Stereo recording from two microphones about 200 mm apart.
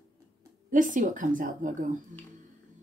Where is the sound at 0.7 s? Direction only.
40° right (ahead or behind).